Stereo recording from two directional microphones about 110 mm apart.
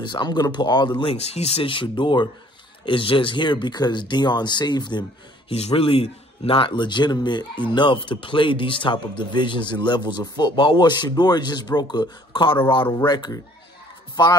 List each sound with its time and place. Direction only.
0.0 s speech: 45° left (ahead or behind)
1.0 s speech: 70° left (ahead or behind); by 5.0 s 40° left (ahead or behind)
5.5 s speech: 65° left (ahead or behind); by 13.4 s 40° left (ahead or behind)